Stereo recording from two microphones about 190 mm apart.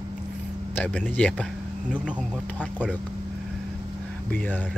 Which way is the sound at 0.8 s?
5° left (ahead or behind).